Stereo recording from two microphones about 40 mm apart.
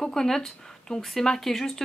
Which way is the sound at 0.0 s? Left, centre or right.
Centre.